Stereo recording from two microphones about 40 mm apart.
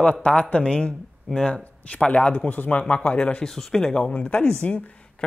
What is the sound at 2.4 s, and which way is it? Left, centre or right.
Speech, left.